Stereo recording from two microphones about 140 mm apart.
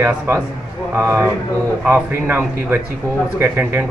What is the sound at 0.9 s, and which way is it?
Speech, 15° right (ahead or behind).